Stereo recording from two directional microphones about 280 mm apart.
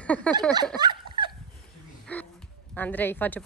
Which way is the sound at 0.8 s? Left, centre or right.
Centre.